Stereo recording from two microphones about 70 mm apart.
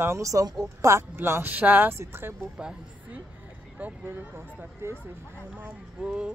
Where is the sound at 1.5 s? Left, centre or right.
Right.